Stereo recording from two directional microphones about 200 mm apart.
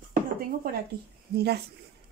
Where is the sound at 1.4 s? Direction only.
55° right (ahead or behind).